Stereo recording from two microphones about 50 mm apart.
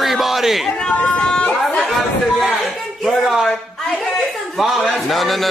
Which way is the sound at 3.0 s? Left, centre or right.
Centre.